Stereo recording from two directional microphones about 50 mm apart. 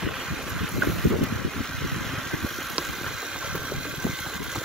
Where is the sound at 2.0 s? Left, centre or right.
Centre.